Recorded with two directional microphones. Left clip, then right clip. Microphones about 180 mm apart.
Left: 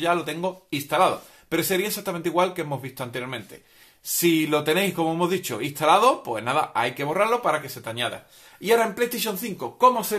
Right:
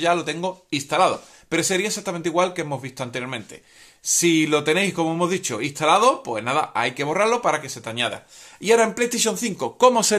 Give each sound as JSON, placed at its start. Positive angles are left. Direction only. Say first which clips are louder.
{"t": 0.0, "sound": "speech", "louder": "right 3 dB", "side_deg": -20}